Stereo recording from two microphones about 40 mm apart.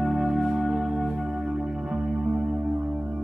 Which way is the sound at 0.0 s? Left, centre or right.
Centre.